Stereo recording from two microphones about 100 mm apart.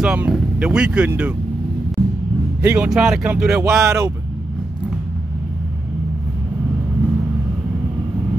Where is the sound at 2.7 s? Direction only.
10° right (ahead or behind).